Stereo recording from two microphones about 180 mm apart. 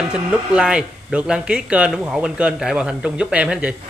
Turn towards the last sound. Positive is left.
turn(degrees=-5)  # may be behind; listen again after turning